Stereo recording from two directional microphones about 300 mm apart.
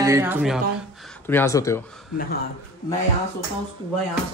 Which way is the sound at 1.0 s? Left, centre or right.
Centre.